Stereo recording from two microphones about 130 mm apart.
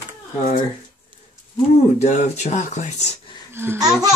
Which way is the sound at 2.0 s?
60° left (ahead or behind).